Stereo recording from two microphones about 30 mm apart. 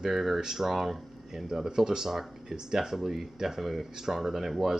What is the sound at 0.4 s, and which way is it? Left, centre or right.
Speech, centre.